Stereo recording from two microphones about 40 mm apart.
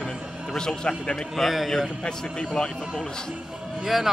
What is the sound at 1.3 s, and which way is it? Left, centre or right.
Speech, centre.